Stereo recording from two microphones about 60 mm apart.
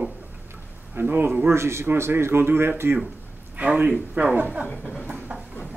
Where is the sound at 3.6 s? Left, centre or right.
Right.